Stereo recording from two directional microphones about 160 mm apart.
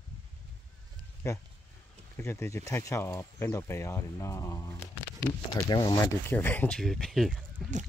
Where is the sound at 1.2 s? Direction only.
20° left (ahead or behind).